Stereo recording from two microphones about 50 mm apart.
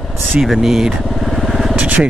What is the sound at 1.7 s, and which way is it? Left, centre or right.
Vehicle, right.